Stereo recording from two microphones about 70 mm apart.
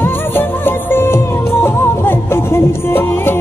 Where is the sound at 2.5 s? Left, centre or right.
Left.